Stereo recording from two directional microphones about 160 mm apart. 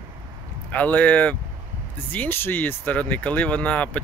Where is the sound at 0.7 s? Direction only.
10° left (ahead or behind).